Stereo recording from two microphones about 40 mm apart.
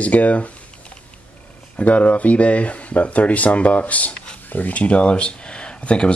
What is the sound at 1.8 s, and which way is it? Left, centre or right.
Speech, left.